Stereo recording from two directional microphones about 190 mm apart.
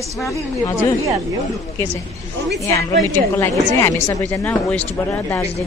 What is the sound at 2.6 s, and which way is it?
A woman's voice, 15° left (ahead or behind).